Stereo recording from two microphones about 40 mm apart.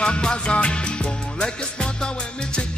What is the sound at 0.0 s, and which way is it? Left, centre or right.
Music, left.